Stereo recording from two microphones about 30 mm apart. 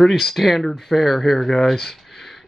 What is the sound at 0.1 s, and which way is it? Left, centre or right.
Speech, centre.